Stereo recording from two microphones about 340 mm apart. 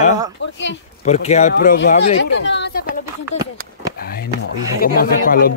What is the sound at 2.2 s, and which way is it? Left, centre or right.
Speech, left.